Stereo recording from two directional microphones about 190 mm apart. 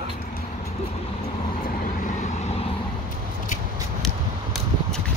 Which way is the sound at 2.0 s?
40° left (ahead or behind).